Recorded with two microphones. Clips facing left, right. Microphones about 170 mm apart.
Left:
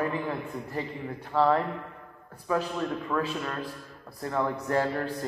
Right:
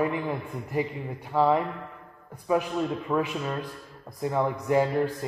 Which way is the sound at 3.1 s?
15° right (ahead or behind).